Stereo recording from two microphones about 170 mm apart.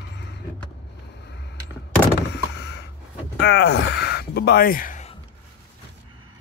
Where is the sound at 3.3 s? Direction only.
90° left; by 5.1 s 50° left (ahead or behind).